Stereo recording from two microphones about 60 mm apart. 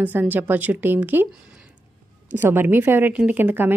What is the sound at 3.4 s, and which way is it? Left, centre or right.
Speech, right.